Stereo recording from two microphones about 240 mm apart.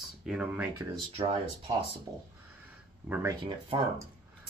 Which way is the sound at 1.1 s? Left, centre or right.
Right.